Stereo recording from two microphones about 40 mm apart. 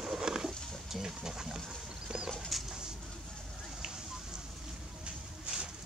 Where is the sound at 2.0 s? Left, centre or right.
Centre.